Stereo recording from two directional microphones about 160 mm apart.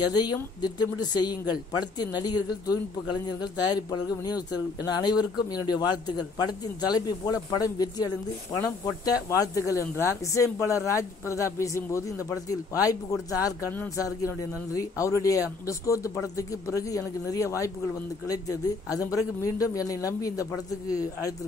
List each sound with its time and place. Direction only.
0.0 s speech: 25° left (ahead or behind)